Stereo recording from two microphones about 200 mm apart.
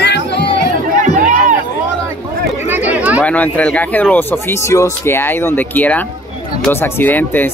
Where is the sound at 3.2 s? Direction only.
10° left (ahead or behind).